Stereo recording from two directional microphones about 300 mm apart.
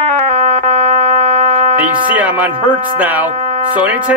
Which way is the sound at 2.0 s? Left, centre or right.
Centre.